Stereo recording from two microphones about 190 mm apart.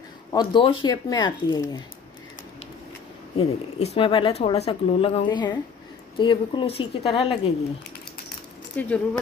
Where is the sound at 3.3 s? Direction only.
30° left (ahead or behind).